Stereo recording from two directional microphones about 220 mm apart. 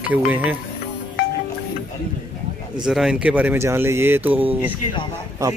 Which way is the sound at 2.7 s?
5° right (ahead or behind).